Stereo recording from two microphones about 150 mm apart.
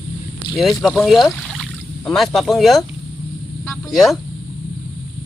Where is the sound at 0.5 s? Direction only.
Centre (ahead or behind).